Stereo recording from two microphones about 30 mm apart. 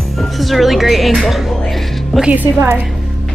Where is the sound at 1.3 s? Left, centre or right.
Centre.